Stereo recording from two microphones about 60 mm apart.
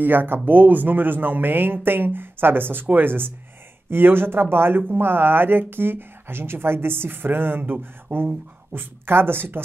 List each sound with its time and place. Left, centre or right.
0.0 s speech: right